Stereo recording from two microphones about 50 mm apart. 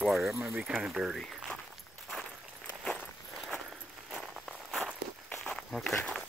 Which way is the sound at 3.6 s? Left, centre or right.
Centre.